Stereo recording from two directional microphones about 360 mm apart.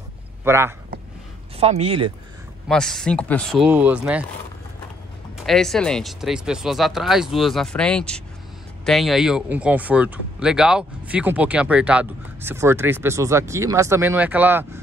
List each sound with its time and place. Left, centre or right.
0.4 s speech: centre
1.6 s speech: centre
2.7 s speech: centre
5.4 s speech: centre